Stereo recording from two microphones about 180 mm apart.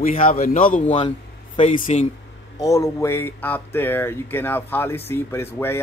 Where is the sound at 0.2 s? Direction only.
50° left (ahead or behind).